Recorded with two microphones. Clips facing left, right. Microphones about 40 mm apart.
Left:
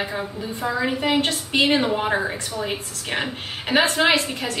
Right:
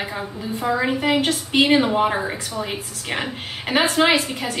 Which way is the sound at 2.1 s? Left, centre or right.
Centre.